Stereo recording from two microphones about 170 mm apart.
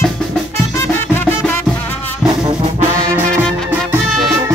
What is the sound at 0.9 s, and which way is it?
Music, 10° left (ahead or behind).